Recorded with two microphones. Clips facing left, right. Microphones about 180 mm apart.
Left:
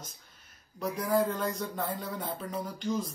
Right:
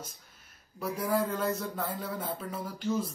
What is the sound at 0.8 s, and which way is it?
Speech, 10° right (ahead or behind).